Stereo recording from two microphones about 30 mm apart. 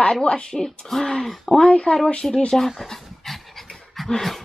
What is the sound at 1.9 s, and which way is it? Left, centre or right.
Speech, left.